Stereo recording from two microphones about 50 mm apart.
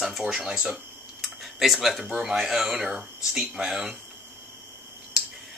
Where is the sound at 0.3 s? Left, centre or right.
Centre.